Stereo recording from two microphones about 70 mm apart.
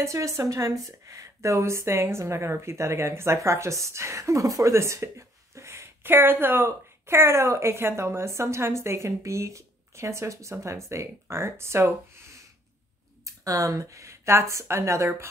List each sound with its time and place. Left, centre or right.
0.0 s speech: right
13.2 s a sound: right
14.5 s speech: right